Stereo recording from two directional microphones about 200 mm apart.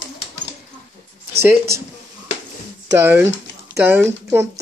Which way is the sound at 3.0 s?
10° right (ahead or behind).